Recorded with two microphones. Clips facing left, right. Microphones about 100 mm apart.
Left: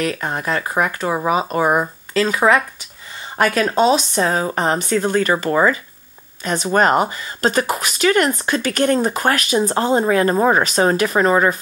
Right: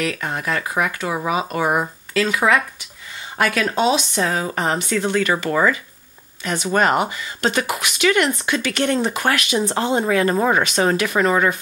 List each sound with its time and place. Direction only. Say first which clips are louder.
0.0 s a woman's voice: left 2 dB; 35° left (ahead or behind)